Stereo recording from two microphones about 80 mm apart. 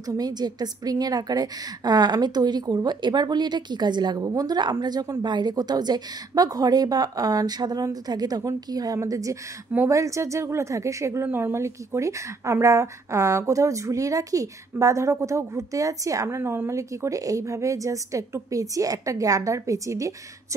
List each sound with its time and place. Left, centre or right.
0.0 s a woman's voice: right
11.2 s a woman's voice: right